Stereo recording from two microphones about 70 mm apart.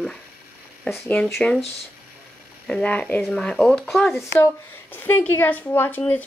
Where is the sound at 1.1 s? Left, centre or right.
Centre.